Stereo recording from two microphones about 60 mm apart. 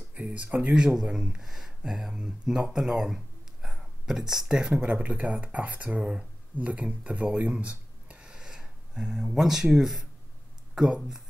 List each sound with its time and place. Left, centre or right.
0.1 s speech: right
4.8 s speech: right